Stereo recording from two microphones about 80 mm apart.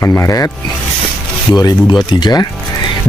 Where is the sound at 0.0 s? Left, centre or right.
Left.